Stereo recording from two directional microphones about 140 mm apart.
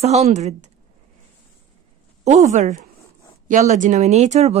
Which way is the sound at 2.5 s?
55° right (ahead or behind).